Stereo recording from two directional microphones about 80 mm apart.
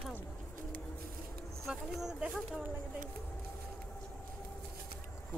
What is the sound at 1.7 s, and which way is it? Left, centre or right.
Speech, centre.